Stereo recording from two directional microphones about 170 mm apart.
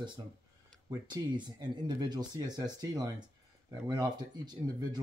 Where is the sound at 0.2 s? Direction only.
25° right (ahead or behind).